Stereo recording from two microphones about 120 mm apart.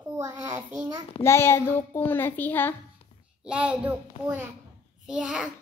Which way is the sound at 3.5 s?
10° right (ahead or behind).